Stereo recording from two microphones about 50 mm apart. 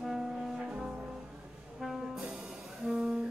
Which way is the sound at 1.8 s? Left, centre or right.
Centre.